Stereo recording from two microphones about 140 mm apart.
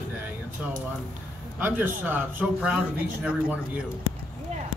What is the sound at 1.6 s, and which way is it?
A man's voice, 15° right (ahead or behind).